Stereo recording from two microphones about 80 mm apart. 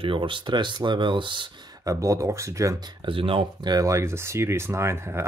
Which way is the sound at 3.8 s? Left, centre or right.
Right.